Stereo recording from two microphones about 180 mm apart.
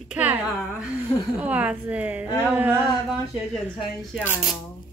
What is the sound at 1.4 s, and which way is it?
A woman's voice, 10° right (ahead or behind).